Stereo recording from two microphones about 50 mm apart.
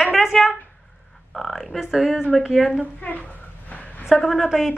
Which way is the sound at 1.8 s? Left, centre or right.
Centre.